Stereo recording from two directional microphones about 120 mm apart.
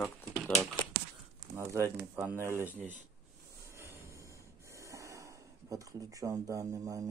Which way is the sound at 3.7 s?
25° right (ahead or behind).